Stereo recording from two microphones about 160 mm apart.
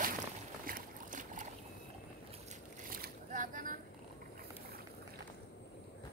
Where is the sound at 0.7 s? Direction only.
55° right (ahead or behind).